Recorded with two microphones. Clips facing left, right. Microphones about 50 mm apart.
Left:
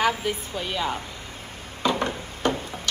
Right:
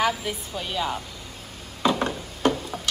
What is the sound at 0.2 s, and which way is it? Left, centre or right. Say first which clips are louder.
Speech: left 3 dB; centre.